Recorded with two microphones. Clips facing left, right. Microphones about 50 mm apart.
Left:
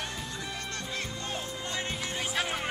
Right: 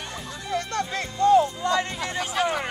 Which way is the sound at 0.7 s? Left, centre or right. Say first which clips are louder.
Right 8 dB; right.